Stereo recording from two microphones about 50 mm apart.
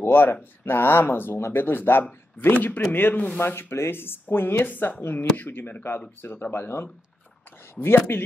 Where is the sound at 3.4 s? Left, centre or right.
Left.